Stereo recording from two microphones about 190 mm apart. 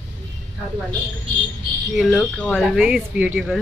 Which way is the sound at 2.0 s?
5° left (ahead or behind).